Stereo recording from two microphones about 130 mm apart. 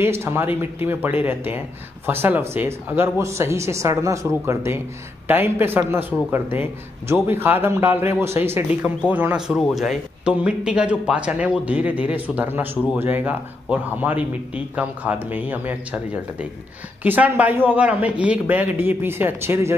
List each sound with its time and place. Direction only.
0.0 s a man's voice: 20° right (ahead or behind)